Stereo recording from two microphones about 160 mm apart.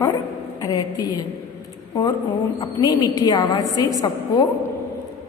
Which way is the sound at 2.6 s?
20° left (ahead or behind).